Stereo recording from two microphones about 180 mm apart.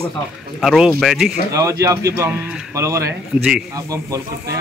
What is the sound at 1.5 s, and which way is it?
A man's voice, 15° right (ahead or behind).